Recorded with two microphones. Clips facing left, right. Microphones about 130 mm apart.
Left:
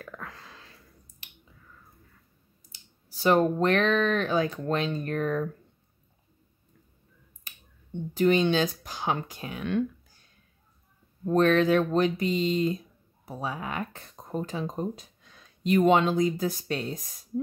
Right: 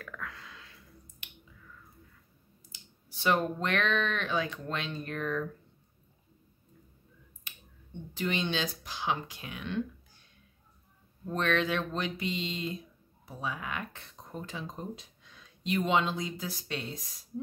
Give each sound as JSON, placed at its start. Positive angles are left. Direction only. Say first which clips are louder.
{"t": 0.0, "sound": "a sound", "louder": "left 2 dB", "side_deg": 35}
{"t": 1.2, "sound": "finger snapping", "louder": "left 2 dB", "side_deg": 35}
{"t": 2.7, "sound": "speech", "louder": "even", "side_deg": 35}
{"t": 8.1, "sound": "speech", "louder": "left 10 dB", "side_deg": 45}
{"t": 11.2, "sound": "speech", "louder": "left 8 dB", "side_deg": 40}